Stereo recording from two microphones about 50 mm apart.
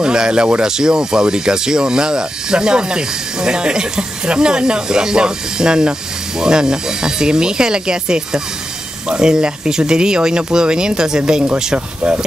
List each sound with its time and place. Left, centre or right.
0.0 s speech: centre